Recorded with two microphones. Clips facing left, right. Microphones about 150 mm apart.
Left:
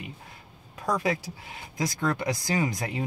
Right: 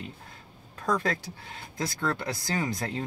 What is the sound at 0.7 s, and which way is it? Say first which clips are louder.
Speech: left 1 dB; 10° left (ahead or behind).